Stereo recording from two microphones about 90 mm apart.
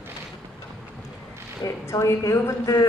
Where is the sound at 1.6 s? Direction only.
35° left (ahead or behind).